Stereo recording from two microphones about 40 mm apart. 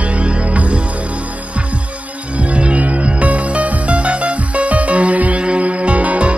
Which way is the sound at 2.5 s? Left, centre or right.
Right.